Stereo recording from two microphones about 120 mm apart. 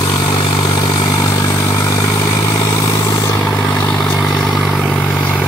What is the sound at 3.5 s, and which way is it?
Vehicle, 10° left (ahead or behind).